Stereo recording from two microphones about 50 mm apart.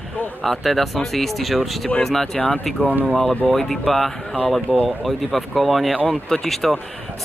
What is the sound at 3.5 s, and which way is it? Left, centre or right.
Speech, centre.